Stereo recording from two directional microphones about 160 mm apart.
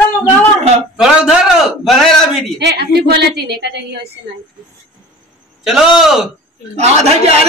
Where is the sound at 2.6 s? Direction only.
90° right.